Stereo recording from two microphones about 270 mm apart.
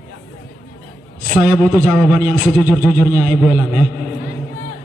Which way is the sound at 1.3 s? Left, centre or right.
Centre.